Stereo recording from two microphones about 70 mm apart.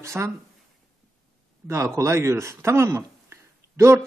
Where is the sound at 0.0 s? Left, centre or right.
Right.